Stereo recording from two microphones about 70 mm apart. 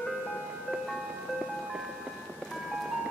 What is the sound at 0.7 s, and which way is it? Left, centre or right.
Ice cream truck, centre.